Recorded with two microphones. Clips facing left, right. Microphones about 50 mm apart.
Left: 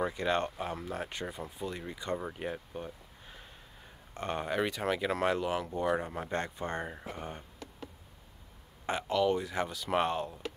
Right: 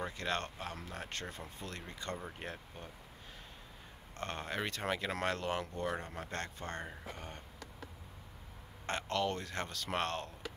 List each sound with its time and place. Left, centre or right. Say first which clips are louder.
0.0 s speech: left 7 dB; centre
4.1 s speech: left 6 dB; centre
8.8 s speech: left 6 dB; centre